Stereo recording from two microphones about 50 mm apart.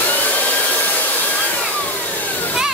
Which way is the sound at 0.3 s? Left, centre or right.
Left.